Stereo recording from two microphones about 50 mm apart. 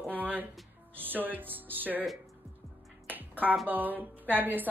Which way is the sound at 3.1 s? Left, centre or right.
Right.